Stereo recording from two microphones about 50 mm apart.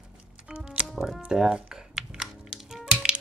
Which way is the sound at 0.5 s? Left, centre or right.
Right.